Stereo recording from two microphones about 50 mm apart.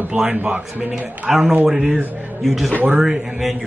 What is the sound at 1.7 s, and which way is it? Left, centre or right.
A man's voice, centre.